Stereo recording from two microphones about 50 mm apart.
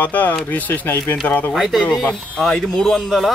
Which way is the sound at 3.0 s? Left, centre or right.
Centre.